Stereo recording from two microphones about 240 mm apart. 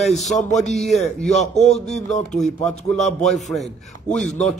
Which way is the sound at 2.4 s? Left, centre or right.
Centre.